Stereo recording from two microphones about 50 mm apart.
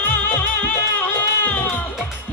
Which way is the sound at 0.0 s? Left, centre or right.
Left.